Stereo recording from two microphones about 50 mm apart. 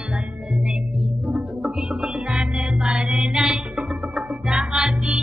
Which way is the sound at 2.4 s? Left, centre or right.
Centre.